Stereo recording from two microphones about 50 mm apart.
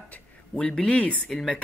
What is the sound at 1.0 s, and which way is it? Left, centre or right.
Speech, left.